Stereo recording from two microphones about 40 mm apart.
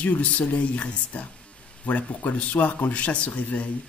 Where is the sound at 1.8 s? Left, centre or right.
Left.